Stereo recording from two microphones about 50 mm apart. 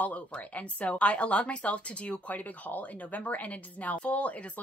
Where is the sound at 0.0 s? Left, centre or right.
Left.